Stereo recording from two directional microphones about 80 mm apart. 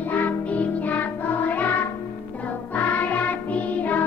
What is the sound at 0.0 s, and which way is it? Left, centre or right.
Music, left.